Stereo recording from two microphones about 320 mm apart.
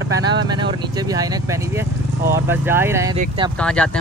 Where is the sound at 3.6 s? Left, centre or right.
Centre.